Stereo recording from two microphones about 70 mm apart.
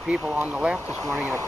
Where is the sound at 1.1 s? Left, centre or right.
Right.